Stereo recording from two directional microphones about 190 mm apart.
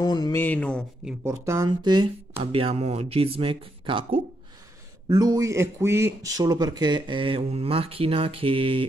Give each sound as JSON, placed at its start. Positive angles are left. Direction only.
{"t": 0.0, "sound": "mantra", "side_deg": 20}
{"t": 0.4, "sound": "a sound", "side_deg": 5}
{"t": 1.2, "sound": "speech", "side_deg": -15}